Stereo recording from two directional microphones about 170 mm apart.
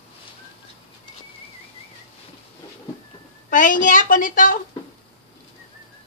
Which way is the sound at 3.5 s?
50° left (ahead or behind).